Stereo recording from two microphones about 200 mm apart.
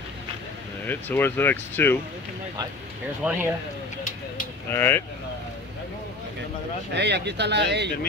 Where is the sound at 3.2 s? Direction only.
5° right (ahead or behind).